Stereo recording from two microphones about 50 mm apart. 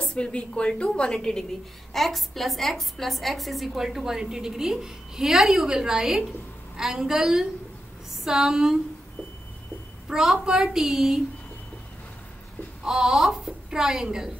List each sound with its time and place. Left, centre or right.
0.0 s a woman's voice: centre
10.0 s a woman's voice: centre
12.8 s a woman's voice: centre